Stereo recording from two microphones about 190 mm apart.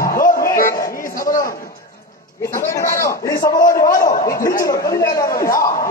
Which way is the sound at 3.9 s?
45° left (ahead or behind).